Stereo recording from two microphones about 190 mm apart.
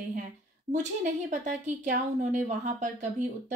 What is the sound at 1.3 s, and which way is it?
A woman's voice, 40° right (ahead or behind).